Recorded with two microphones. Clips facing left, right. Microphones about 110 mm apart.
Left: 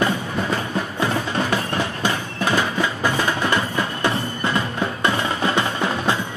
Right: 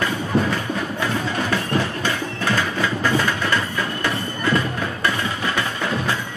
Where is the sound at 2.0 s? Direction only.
15° left (ahead or behind).